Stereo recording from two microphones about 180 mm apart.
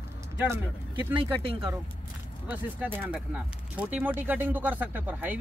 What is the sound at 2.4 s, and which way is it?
Speech, 10° right (ahead or behind).